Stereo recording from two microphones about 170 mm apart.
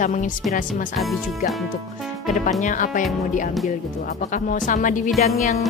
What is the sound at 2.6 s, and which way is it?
Speech, 50° left (ahead or behind).